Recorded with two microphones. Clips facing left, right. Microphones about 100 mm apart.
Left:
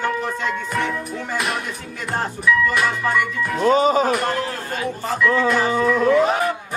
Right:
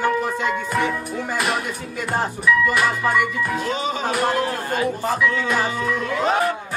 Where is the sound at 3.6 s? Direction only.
40° left (ahead or behind).